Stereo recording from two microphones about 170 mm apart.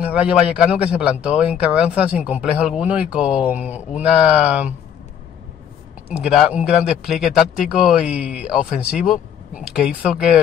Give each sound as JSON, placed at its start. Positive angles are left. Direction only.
{"t": 0.0, "sound": "a man's voice", "side_deg": -5}
{"t": 6.0, "sound": "a man's voice", "side_deg": -5}